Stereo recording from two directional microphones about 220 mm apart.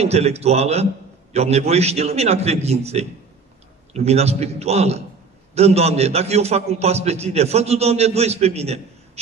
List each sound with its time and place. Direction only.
0.0 s a man's voice: 30° right (ahead or behind)